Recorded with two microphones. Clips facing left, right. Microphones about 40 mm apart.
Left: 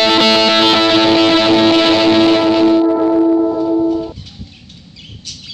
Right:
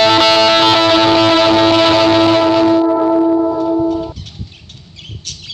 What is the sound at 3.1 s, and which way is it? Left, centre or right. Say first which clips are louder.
Music: even; right.